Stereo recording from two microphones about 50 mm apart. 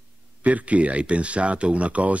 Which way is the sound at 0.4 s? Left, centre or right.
Right.